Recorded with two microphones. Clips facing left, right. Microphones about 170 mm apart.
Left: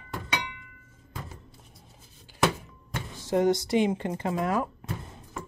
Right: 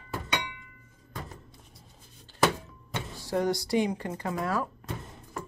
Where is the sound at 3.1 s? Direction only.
20° left (ahead or behind).